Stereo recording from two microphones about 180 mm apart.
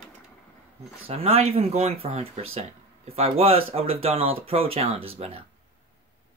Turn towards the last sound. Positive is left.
turn(degrees=-30)  # may be behind; listen again after turning